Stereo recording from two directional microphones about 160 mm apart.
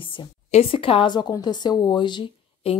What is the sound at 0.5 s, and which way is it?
Speech, 40° left (ahead or behind).